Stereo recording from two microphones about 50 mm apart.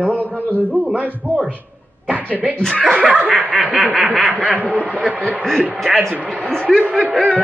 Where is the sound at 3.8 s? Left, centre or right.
Right.